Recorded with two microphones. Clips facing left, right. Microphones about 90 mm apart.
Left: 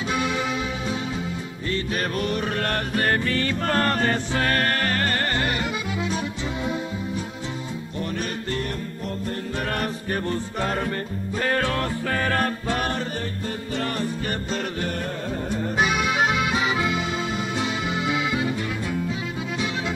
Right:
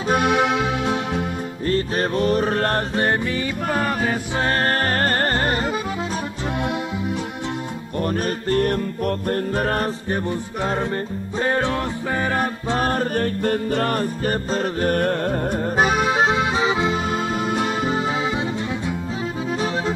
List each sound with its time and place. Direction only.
0.1 s accordion: 60° right (ahead or behind)
1.7 s music: 35° right (ahead or behind)
3.1 s music: 15° right (ahead or behind)
4.4 s accordion: 30° right (ahead or behind)
8.0 s music: 45° right (ahead or behind)
10.0 s music: 20° right (ahead or behind)
12.7 s music: 40° right (ahead or behind)
14.9 s accordion: 60° right (ahead or behind); by 16.9 s 25° right (ahead or behind)
16.9 s music: 45° right (ahead or behind)